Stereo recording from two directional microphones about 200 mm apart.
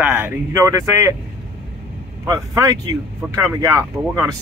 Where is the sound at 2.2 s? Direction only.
15° right (ahead or behind).